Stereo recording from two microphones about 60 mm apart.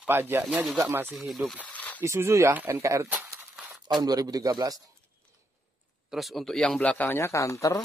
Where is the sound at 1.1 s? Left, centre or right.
Centre.